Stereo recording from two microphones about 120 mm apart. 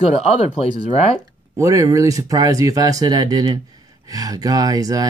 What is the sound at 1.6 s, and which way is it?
Speech, 30° right (ahead or behind).